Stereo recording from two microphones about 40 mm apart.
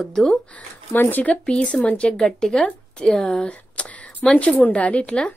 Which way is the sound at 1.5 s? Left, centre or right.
Left.